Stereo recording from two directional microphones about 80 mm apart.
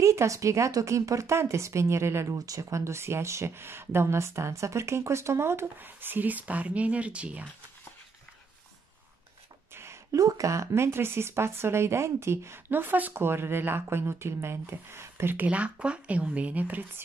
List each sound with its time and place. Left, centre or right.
0.0 s speech: right
2.3 s speech: right; by 7.4 s centre
10.1 s speech: right